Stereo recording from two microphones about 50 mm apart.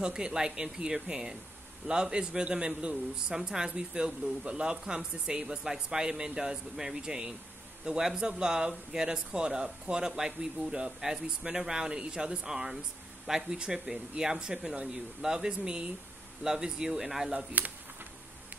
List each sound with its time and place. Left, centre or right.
0.0 s speech: centre
17.6 s speech: right